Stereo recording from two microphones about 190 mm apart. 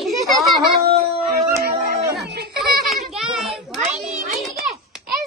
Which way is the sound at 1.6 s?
55° right (ahead or behind).